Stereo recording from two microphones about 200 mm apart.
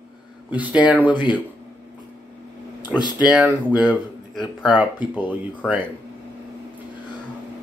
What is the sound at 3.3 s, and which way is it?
Speech, 5° right (ahead or behind).